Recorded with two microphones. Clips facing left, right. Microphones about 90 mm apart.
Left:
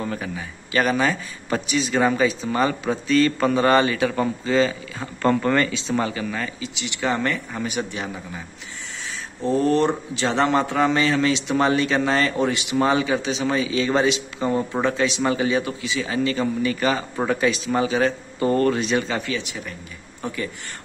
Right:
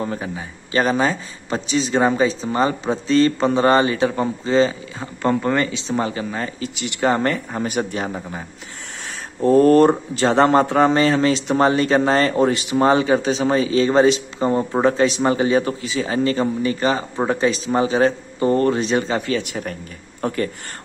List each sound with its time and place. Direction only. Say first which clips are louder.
0.0 s a man's voice: right 2 dB; 30° right (ahead or behind)
5.0 s a man's voice: even; 15° right (ahead or behind)
6.6 s speech: right 5 dB; 45° right (ahead or behind)
19.3 s speech: right 6 dB; 50° right (ahead or behind)